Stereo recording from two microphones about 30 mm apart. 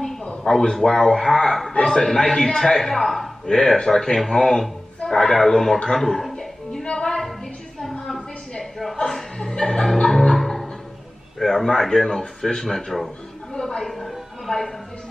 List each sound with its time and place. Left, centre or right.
0.7 s speech: centre
1.7 s a man's voice: left
2.0 s speech: centre
2.7 s speech: centre
3.4 s speech: centre
6.8 s music: left
8.9 s chuckle: centre
9.5 s music: centre
11.3 s speech: centre
13.5 s a woman's voice: centre
13.9 s a sound: centre